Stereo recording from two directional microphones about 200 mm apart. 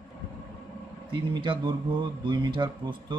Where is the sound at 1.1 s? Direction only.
25° right (ahead or behind).